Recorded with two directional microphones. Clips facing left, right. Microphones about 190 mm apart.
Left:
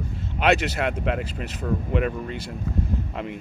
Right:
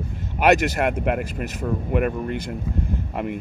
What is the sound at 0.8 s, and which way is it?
Speech, 55° right (ahead or behind).